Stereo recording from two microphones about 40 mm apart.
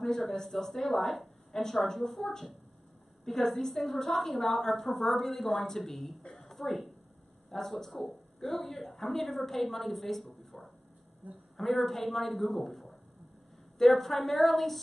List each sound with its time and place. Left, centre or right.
0.2 s a woman's voice: centre